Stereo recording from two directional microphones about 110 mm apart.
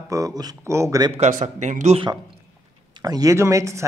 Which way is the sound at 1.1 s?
90° right.